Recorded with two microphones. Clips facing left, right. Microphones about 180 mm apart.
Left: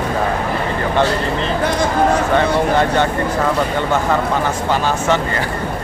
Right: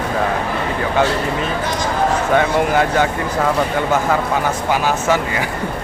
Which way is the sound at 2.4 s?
5° right (ahead or behind).